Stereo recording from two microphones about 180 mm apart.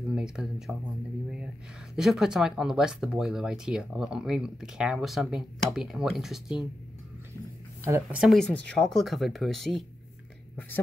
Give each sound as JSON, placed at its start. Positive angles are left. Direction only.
{"t": 0.1, "sound": "speech", "side_deg": -5}
{"t": 2.0, "sound": "speech", "side_deg": -5}
{"t": 7.8, "sound": "speech", "side_deg": -15}
{"t": 8.2, "sound": "speech", "side_deg": 0}